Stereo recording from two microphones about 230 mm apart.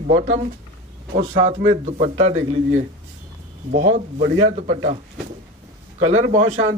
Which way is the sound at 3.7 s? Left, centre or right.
Right.